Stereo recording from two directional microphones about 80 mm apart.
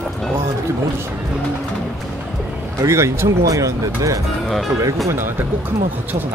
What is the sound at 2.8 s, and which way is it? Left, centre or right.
Speech, right.